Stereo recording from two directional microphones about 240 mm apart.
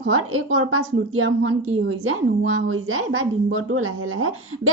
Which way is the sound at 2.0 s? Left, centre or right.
Right.